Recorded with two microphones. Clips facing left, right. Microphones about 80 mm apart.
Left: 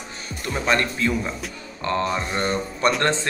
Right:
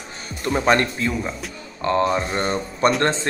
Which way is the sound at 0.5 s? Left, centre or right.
Right.